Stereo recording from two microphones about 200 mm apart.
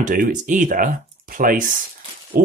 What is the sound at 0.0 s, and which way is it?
Speech, 40° right (ahead or behind).